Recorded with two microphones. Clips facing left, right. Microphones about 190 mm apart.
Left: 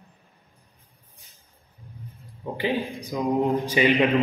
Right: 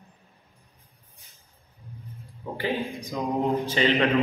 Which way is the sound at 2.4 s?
20° left (ahead or behind).